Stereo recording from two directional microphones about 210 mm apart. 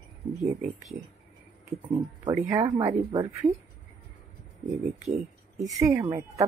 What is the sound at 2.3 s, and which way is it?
Speech, 20° right (ahead or behind).